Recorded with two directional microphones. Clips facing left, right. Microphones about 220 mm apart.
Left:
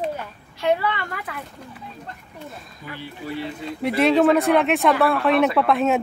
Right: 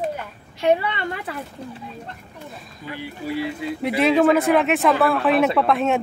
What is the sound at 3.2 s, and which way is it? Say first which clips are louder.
Speech: right 4 dB; 10° right (ahead or behind).